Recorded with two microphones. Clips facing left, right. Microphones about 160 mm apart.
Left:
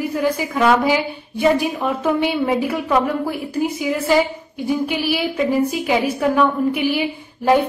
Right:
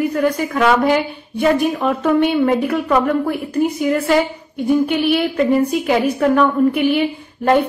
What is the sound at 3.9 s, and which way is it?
A woman's voice, 5° left (ahead or behind).